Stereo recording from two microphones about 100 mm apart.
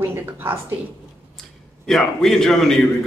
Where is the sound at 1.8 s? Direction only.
5° left (ahead or behind).